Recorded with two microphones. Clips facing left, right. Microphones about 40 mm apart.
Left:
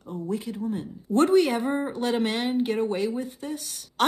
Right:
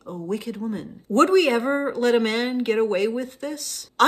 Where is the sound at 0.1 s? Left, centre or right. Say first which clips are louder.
Right 2 dB; right.